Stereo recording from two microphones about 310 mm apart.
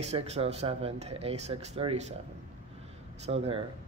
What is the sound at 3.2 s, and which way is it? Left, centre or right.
Speech, centre.